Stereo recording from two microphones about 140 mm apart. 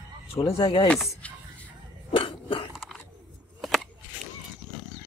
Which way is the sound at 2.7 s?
Centre (ahead or behind).